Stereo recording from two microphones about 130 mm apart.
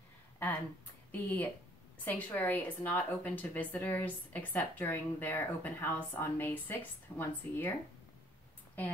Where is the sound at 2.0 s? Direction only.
15° left (ahead or behind).